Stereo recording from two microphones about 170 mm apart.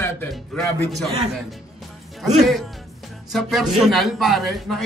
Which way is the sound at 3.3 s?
Centre (ahead or behind).